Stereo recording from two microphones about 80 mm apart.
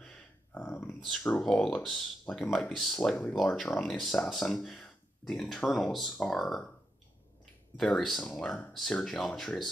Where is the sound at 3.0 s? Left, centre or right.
Centre.